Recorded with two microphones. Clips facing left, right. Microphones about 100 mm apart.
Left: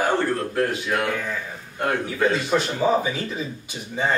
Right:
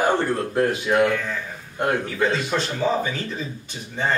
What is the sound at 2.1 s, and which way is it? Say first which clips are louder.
Speech: left 1 dB; 10° left (ahead or behind).